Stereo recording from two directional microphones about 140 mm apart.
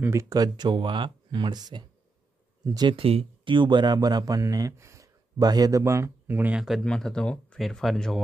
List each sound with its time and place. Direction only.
0.0 s speech: 20° right (ahead or behind)
6.8 s speech: 5° left (ahead or behind)